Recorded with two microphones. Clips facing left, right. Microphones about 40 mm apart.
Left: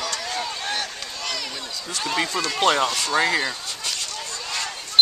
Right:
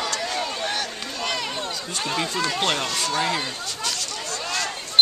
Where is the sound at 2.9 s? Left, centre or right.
Centre.